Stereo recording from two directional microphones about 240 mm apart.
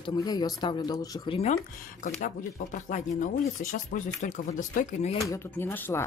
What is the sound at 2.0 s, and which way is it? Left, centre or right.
Speech, left.